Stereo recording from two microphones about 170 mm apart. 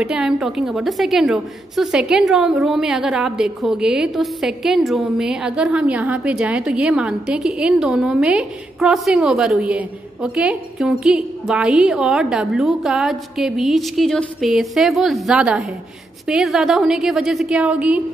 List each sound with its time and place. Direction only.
0.0 s a woman's voice: 5° right (ahead or behind)